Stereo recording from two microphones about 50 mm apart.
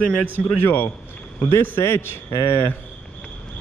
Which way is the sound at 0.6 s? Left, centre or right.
Left.